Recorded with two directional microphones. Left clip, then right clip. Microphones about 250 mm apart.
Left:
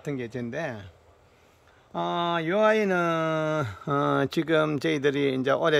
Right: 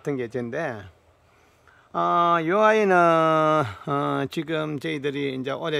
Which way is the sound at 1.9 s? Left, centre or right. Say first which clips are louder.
Right 7 dB; centre.